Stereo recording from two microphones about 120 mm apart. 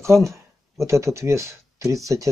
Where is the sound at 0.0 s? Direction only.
25° right (ahead or behind).